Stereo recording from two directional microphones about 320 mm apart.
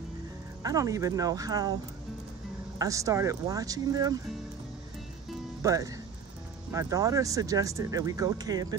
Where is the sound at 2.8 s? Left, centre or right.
Centre.